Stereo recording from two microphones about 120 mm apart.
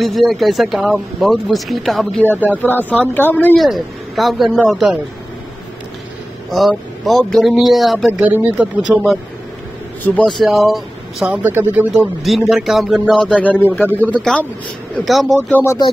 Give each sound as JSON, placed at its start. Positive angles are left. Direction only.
{"t": 0.0, "sound": "speech", "side_deg": 0}
{"t": 2.6, "sound": "speech", "side_deg": 15}
{"t": 3.5, "sound": "speech", "side_deg": 0}
{"t": 6.5, "sound": "speech", "side_deg": 0}
{"t": 8.1, "sound": "speech", "side_deg": -15}
{"t": 10.1, "sound": "speech", "side_deg": 10}
{"t": 10.4, "sound": "speech", "side_deg": 0}
{"t": 11.2, "sound": "speech", "side_deg": -15}
{"t": 11.9, "sound": "speech", "side_deg": 0}
{"t": 14.1, "sound": "speech", "side_deg": 5}
{"t": 15.5, "sound": "speech", "side_deg": 25}